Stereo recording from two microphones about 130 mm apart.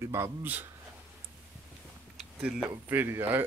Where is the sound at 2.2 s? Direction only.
5° right (ahead or behind).